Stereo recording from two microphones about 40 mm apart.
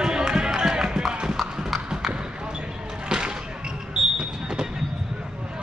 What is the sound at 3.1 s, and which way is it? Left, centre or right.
Basketball bounce, centre.